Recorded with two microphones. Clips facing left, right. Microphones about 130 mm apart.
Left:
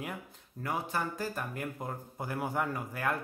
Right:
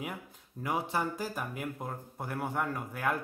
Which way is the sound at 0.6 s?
20° right (ahead or behind).